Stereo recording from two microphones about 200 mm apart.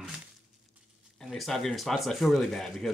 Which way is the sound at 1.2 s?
Centre (ahead or behind).